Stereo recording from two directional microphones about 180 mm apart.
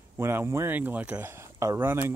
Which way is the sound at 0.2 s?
15° right (ahead or behind).